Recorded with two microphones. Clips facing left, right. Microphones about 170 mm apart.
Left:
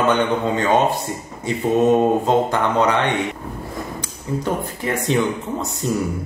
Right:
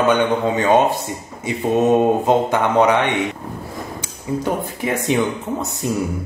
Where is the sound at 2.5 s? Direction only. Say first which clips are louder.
Right 3 dB; 15° right (ahead or behind).